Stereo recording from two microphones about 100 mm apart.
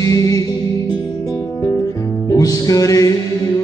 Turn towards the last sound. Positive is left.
turn(degrees=35)  # may be behind; listen again after turning